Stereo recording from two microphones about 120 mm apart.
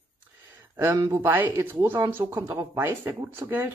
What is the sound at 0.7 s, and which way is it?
Speech, 25° right (ahead or behind).